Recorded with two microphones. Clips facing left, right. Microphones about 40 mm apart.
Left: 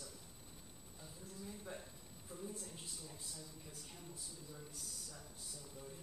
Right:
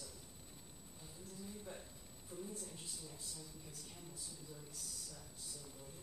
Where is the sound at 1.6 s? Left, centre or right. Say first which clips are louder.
Left 1 dB; centre.